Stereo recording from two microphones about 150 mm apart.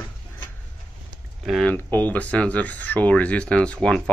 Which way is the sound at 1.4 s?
Centre (ahead or behind).